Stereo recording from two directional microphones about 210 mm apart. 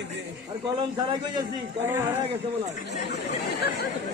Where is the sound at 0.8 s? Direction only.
20° right (ahead or behind).